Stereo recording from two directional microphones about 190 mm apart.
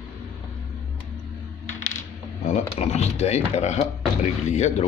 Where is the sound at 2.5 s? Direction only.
35° left (ahead or behind).